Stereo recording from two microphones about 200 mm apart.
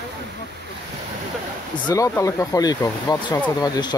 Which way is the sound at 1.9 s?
15° left (ahead or behind).